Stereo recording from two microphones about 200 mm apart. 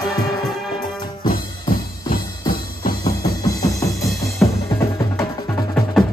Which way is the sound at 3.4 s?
15° left (ahead or behind).